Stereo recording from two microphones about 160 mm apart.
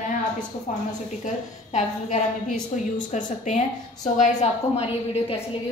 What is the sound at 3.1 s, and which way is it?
A woman's voice, 50° left (ahead or behind).